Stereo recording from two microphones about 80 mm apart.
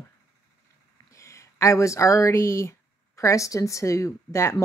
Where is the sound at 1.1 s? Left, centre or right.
Left.